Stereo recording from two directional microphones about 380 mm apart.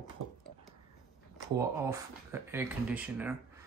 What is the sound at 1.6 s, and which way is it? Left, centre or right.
Speech, centre.